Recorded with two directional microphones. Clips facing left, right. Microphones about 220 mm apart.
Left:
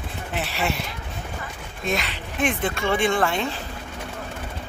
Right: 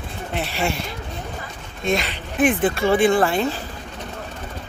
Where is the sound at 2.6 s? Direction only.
35° right (ahead or behind).